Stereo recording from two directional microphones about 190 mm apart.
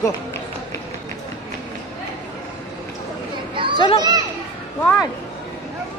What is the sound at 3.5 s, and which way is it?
Children playing, 25° right (ahead or behind).